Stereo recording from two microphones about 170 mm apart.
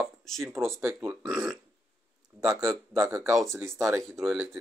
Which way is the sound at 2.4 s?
20° right (ahead or behind).